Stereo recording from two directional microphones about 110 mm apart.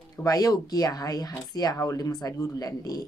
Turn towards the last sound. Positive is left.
turn(degrees=35)  # may be behind; listen again after turning